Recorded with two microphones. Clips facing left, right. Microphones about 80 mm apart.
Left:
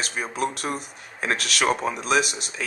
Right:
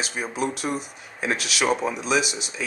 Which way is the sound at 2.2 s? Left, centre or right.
Centre.